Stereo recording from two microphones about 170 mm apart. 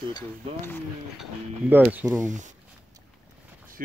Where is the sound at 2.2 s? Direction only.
45° right (ahead or behind).